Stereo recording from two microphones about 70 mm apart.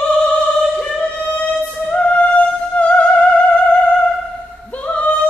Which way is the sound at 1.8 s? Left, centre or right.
Centre.